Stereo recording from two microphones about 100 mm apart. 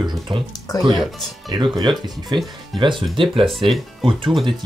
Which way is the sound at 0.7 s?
40° left (ahead or behind).